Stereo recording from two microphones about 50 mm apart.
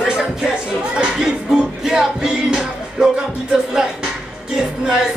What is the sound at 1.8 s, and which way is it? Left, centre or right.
Music, centre.